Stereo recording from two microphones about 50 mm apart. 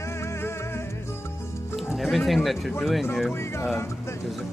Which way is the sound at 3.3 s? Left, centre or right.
Left.